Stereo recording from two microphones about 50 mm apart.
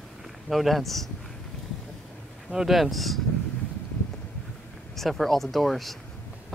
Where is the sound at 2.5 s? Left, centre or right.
Centre.